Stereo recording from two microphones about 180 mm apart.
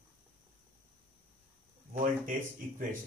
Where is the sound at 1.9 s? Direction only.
50° right (ahead or behind).